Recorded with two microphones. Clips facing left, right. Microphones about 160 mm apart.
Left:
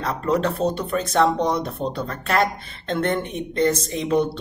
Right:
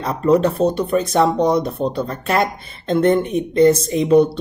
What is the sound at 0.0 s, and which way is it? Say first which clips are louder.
Speech: right 6 dB; 15° right (ahead or behind).